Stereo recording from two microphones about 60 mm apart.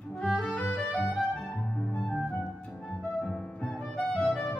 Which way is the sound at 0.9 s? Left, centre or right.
Centre.